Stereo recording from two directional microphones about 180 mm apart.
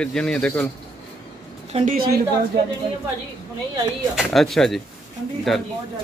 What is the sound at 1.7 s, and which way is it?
Speech, 50° right (ahead or behind).